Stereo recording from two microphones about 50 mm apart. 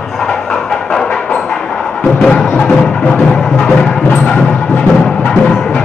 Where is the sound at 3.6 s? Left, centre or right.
Centre.